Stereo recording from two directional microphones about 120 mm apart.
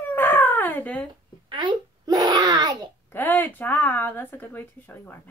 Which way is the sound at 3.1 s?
15° left (ahead or behind).